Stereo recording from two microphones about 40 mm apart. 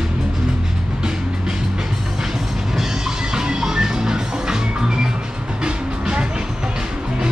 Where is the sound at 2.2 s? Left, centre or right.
Centre.